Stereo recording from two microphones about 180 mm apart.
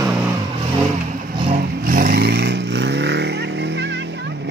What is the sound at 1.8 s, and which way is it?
Vehicle, 50° right (ahead or behind).